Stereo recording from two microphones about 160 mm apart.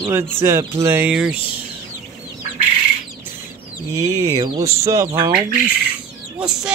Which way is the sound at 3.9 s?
20° right (ahead or behind).